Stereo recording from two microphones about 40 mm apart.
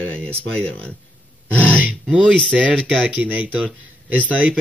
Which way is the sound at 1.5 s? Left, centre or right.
Left.